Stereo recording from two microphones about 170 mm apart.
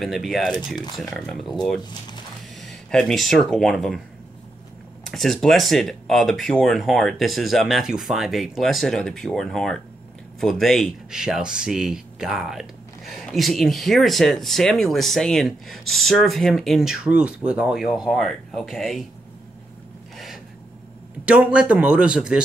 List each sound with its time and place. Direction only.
0.0 s speech: centre (ahead or behind)
1.8 s speech: 25° left (ahead or behind)
2.6 s speech: centre (ahead or behind)
5.0 s speech: centre (ahead or behind)
21.3 s a man's voice: 5° right (ahead or behind)